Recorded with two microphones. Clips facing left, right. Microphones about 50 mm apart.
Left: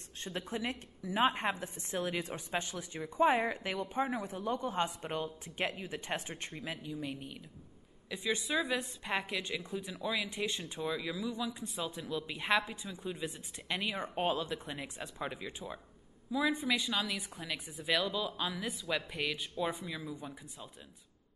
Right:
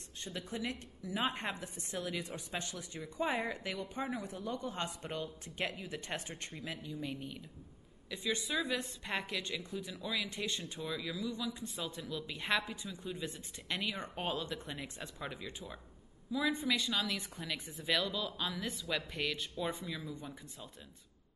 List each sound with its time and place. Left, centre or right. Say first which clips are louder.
0.2 s speech: left 3 dB; left; by 7.4 s centre
8.1 s speech: left 2 dB; centre